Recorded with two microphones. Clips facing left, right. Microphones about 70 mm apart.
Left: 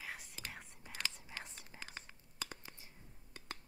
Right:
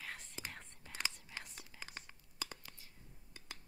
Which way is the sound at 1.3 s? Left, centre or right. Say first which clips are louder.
Left 1 dB; left.